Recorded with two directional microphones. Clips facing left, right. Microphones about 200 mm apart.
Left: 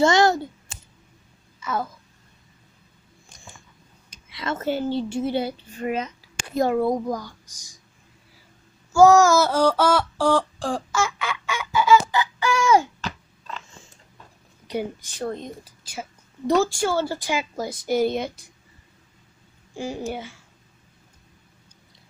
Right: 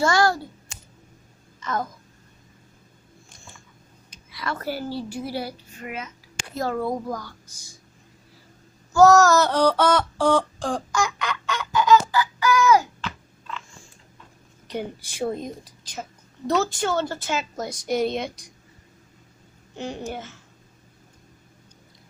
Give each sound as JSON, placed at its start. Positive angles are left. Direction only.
{"t": 0.0, "sound": "a child's voice", "side_deg": 20}
{"t": 1.6, "sound": "a woman's voice", "side_deg": 10}
{"t": 4.3, "sound": "a woman's voice", "side_deg": 25}
{"t": 6.5, "sound": "a woman's voice", "side_deg": 20}
{"t": 8.9, "sound": "a sound", "side_deg": 15}
{"t": 12.1, "sound": "a sound", "side_deg": 25}
{"t": 15.0, "sound": "speech", "side_deg": -10}
{"t": 15.6, "sound": "a woman's voice", "side_deg": 5}
{"t": 19.7, "sound": "a child's voice", "side_deg": 10}